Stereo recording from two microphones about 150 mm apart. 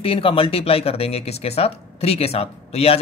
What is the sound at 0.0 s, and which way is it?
Speech, 35° left (ahead or behind).